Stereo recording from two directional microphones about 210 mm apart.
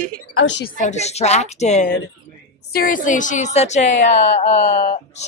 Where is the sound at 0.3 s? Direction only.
90° left.